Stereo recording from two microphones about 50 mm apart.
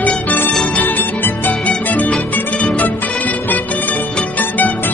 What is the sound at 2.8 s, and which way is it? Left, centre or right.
Music, left.